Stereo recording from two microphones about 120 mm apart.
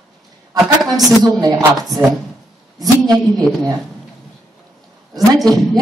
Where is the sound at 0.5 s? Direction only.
Centre (ahead or behind).